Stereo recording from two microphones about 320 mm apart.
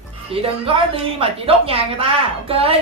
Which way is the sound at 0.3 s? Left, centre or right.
Centre.